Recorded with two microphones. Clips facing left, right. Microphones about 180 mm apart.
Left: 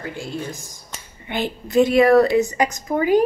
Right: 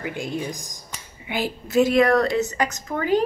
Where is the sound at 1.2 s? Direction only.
5° right (ahead or behind).